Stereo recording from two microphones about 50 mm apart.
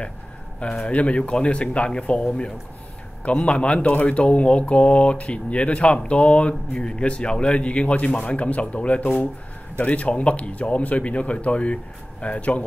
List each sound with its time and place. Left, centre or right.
0.6 s speech: centre
3.3 s speech: left